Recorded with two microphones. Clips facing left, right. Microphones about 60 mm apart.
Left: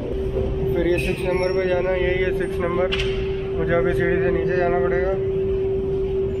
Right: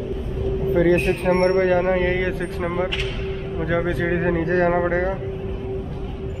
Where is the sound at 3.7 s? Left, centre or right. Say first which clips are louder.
Left 2 dB; centre.